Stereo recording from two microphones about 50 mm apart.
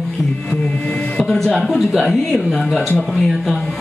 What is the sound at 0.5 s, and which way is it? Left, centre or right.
Music, left.